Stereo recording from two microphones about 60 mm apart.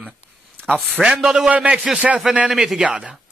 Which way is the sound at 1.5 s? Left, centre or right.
Right.